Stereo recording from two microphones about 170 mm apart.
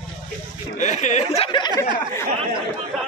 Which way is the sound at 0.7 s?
45° left (ahead or behind).